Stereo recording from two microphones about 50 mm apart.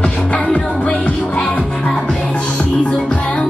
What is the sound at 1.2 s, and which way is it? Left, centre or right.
Music, centre.